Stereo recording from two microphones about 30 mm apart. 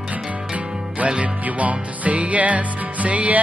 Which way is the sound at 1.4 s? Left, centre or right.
Right.